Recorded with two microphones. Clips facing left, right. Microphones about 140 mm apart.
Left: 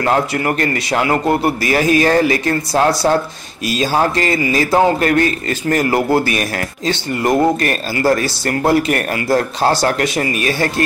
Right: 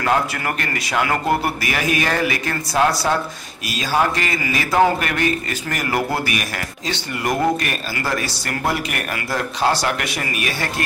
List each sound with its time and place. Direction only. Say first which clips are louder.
0.0 s a man's voice: left 4 dB; 30° left (ahead or behind)
7.6 s a man's voice: left 9 dB; 40° left (ahead or behind)